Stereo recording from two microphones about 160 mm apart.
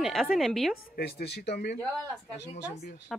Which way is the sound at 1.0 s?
85° left.